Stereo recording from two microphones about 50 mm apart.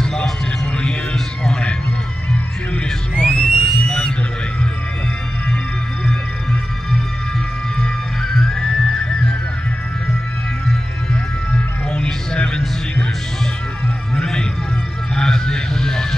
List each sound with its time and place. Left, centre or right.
0.0 s music: centre
1.1 s a sound: centre
2.7 s a sound: centre
7.8 s music: centre
11.5 s music: left
14.1 s music: centre
15.1 s vehicle: centre